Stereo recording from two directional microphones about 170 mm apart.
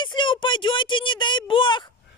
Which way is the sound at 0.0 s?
30° left (ahead or behind).